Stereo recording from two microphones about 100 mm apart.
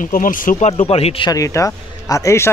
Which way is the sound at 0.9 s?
90° left.